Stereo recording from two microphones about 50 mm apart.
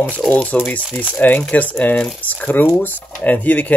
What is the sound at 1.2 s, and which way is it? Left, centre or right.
Speech, left.